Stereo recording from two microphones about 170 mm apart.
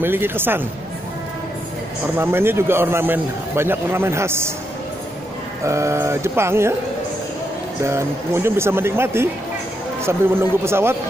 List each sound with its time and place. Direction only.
0.0 s a man's voice: 15° right (ahead or behind)
2.1 s a man's voice: 15° right (ahead or behind)
5.6 s a man's voice: 15° right (ahead or behind)
7.8 s a man's voice: 15° right (ahead or behind)